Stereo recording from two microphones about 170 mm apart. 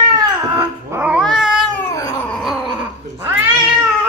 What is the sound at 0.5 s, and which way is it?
Cat, 10° right (ahead or behind).